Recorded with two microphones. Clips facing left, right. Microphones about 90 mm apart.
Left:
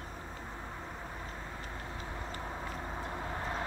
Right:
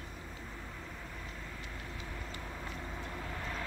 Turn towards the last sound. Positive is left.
turn(degrees=35)  # may be behind; listen again after turning